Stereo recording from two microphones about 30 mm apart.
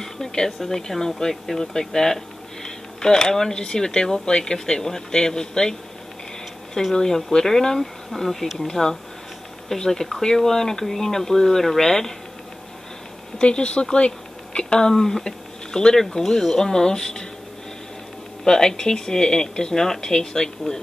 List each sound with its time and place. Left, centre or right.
0.0 s a sound: left
0.5 s speech: centre; by 5.8 s left
6.9 s speech: centre
13.4 s speech: left
14.8 s speech: centre
18.4 s speech: centre